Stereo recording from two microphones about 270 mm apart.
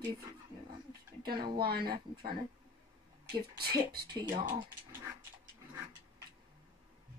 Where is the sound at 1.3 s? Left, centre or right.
Centre.